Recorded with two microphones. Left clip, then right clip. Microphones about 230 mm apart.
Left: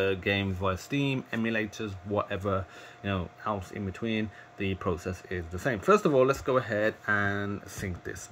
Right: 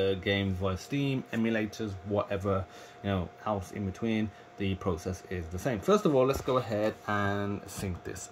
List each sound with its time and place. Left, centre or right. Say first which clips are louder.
0.0 s speech: left 1 dB; centre